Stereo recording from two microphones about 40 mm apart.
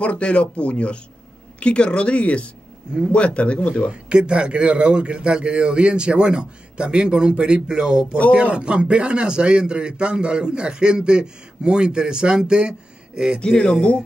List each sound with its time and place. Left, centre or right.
0.0 s speech: left
3.9 s a man's voice: right